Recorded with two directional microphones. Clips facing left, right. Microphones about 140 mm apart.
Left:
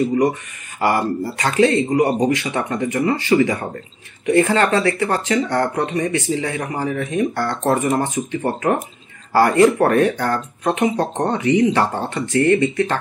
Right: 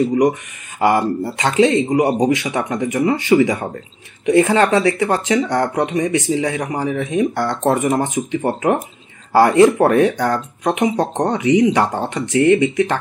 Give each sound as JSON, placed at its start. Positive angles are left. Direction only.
{"t": 0.7, "sound": "speech", "side_deg": -20}